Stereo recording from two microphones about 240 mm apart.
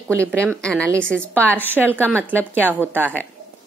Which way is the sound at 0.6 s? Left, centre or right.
Centre.